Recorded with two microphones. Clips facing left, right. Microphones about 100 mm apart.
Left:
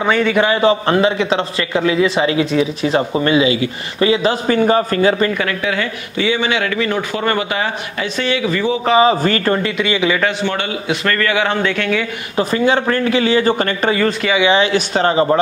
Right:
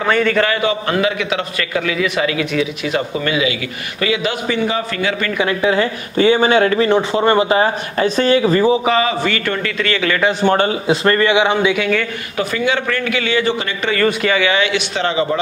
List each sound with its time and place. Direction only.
0.0 s a man's voice: 5° left (ahead or behind)
0.6 s a man's voice: 30° left (ahead or behind)
5.6 s speech: 30° right (ahead or behind)
9.0 s speech: 40° left (ahead or behind)
9.8 s a man's voice: 15° left (ahead or behind)
10.4 s speech: 40° right (ahead or behind); by 11.9 s 10° right (ahead or behind)
12.4 s speech: 35° left (ahead or behind)
14.4 s speech: 30° left (ahead or behind)